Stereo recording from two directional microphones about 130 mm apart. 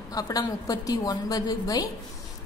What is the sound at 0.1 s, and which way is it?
A woman's voice, 30° left (ahead or behind).